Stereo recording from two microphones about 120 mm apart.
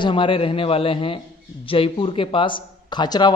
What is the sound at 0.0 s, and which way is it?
A man's voice, 45° left (ahead or behind).